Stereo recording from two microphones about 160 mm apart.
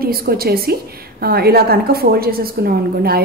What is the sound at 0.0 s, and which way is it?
A woman's voice, 70° right (ahead or behind).